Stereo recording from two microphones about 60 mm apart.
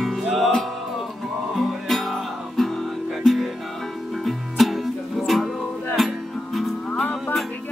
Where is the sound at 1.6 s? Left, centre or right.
Centre.